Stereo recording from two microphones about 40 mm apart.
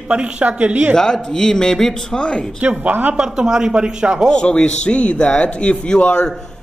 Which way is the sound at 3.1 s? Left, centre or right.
Centre.